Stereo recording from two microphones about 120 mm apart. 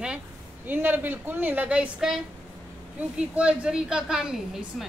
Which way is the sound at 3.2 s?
10° right (ahead or behind).